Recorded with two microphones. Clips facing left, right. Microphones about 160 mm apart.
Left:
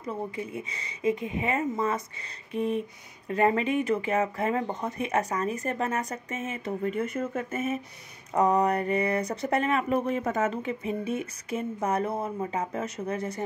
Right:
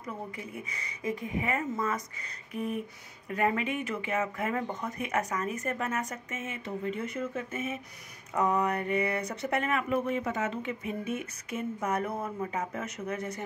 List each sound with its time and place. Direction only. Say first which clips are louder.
0.7 s speech: left 7 dB; 25° left (ahead or behind)